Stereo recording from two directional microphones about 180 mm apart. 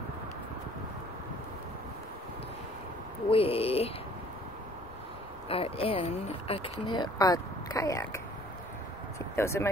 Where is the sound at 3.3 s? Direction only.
30° left (ahead or behind).